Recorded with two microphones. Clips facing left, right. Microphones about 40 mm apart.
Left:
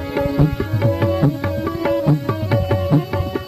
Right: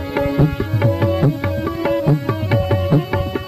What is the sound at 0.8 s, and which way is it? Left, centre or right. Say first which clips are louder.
Music: even; centre.